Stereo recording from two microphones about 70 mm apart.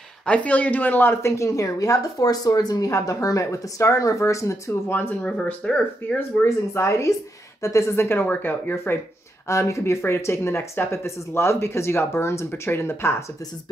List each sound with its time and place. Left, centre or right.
0.3 s speech: centre
1.2 s a woman's voice: left
5.2 s speech: centre
6.1 s speech: left
9.5 s speech: left